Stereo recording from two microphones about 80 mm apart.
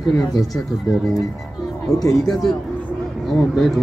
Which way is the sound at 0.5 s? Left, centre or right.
Centre.